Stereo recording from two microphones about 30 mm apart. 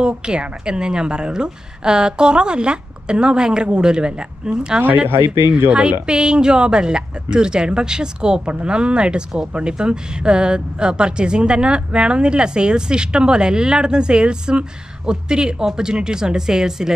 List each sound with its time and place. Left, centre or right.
0.0 s speech: right